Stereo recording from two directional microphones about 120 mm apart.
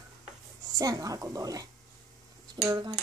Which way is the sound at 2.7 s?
30° right (ahead or behind).